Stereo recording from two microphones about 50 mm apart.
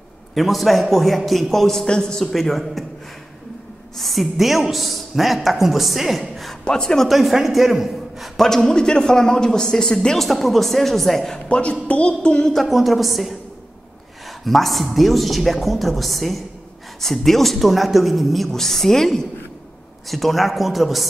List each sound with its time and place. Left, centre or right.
0.3 s a woman's voice: centre
4.0 s a woman's voice: centre
6.6 s a man's voice: centre
8.5 s a man's voice: centre
11.3 s a sound: left
12.5 s a woman's voice: centre
14.4 s a woman's voice: centre